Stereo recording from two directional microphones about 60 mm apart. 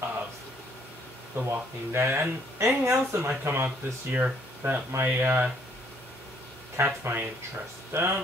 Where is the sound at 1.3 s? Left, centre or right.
Right.